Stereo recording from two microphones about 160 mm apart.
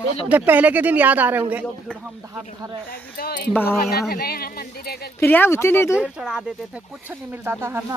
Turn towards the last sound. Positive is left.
turn(degrees=-15)  # may be behind; listen again after turning